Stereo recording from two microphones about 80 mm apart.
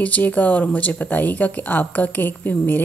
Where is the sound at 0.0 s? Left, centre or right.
Centre.